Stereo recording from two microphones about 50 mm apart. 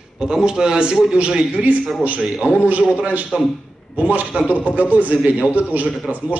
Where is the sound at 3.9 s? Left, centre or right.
Right.